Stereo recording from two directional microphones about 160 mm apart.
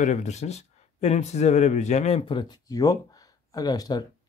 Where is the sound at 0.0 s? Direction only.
50° left (ahead or behind).